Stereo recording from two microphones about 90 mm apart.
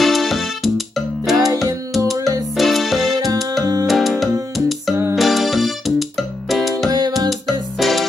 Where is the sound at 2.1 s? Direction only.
40° right (ahead or behind).